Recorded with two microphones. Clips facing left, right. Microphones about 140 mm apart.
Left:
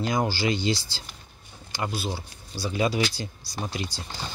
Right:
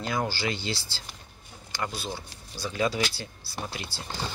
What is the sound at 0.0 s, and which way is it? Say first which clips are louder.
Speech: left 4 dB; 15° left (ahead or behind).